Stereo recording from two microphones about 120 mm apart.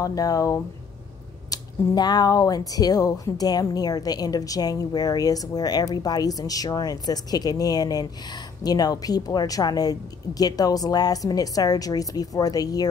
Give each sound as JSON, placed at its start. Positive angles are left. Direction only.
{"t": 0.0, "sound": "speech", "side_deg": 30}